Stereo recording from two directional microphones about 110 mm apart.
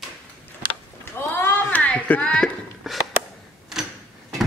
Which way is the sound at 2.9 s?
Centre (ahead or behind).